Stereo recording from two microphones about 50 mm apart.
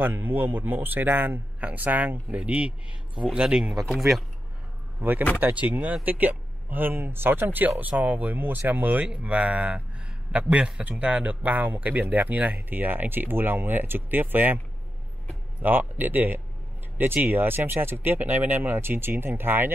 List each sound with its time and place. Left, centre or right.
0.0 s speech: right
1.6 s speech: right; by 3.7 s centre
5.4 s speech: right
15.6 s speech: right